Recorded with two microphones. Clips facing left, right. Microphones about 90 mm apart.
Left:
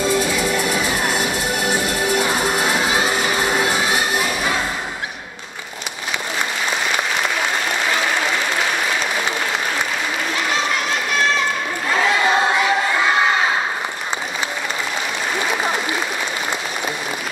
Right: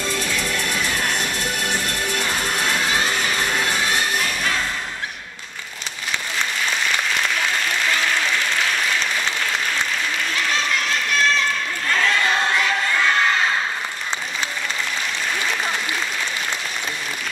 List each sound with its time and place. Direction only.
0.0 s music: 15° left (ahead or behind)
7.9 s applause: 15° left (ahead or behind)
11.9 s crowd: 15° left (ahead or behind)